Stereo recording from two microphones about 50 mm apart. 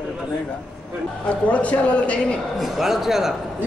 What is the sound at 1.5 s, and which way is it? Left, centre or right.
Speech, left.